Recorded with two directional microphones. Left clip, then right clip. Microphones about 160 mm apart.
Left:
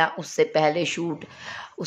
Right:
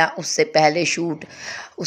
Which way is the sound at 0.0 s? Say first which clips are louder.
Right 3 dB; 15° right (ahead or behind).